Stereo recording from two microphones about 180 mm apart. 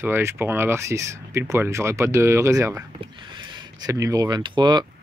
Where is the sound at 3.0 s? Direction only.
25° right (ahead or behind).